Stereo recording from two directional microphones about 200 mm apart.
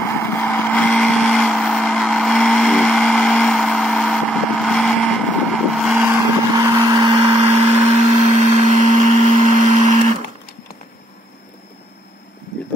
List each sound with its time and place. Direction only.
0.0 s vehicle: 15° left (ahead or behind); by 6.1 s 5° right (ahead or behind)
6.5 s vehicle: 20° right (ahead or behind)
7.6 s a sound: 30° right (ahead or behind)